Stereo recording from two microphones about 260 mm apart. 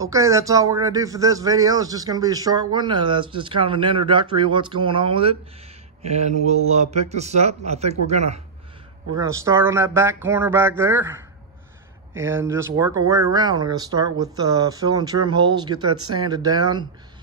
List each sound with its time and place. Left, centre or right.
0.0 s a man's voice: centre
9.2 s speech: centre